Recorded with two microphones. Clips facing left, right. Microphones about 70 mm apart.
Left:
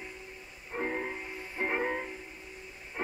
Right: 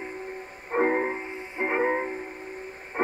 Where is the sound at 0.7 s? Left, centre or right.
Right.